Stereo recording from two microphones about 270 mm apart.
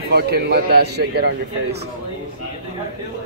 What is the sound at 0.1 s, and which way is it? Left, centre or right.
A man's voice, right.